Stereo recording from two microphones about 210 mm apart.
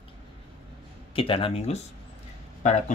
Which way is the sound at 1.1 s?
25° left (ahead or behind).